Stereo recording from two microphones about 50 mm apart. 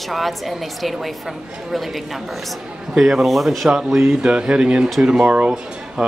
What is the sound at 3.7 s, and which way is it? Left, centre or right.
Speech, centre.